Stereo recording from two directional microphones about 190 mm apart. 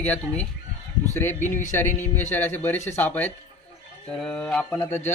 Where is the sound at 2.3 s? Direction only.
10° left (ahead or behind).